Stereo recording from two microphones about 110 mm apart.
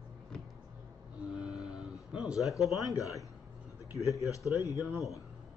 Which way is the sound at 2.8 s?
30° left (ahead or behind).